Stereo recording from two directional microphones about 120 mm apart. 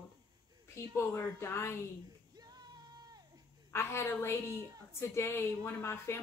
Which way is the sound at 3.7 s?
20° left (ahead or behind).